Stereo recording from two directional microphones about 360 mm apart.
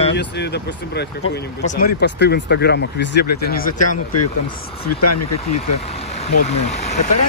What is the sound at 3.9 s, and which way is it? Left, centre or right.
Speech, left.